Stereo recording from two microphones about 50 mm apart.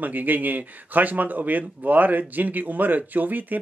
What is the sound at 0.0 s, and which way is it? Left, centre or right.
Speech, right.